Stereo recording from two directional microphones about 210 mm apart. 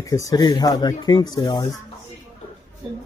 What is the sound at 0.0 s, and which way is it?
Speech, 15° left (ahead or behind).